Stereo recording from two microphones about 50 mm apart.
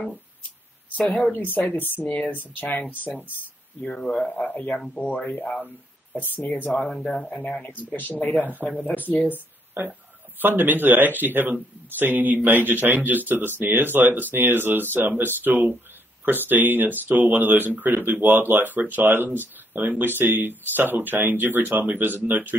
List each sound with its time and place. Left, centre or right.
1.1 s speech: left
3.8 s speech: centre
4.5 s speech: left
6.2 s speech: left
6.9 s speech: centre
7.8 s speech: left
10.4 s speech: right